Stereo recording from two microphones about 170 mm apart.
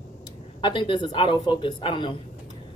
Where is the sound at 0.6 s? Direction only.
30° left (ahead or behind).